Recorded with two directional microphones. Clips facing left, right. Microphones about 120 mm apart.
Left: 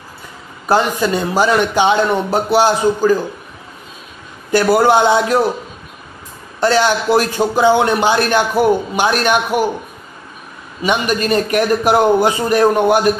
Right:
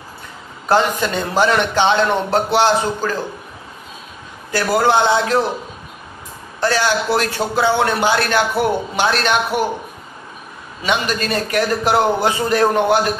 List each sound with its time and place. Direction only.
0.7 s a man's voice: 10° left (ahead or behind)
4.5 s a man's voice: 15° left (ahead or behind)
6.6 s a man's voice: 20° left (ahead or behind)
10.8 s a man's voice: 15° left (ahead or behind)